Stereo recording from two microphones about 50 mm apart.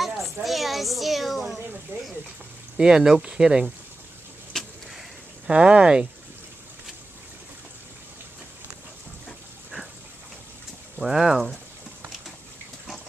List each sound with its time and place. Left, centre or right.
0.0 s a sound: centre
1.9 s speech: right
2.8 s speech: centre
4.5 s a sound: centre
5.5 s speech: right
11.0 s speech: centre